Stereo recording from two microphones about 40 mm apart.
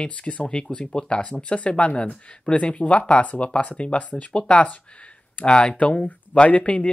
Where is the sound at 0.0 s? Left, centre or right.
Left.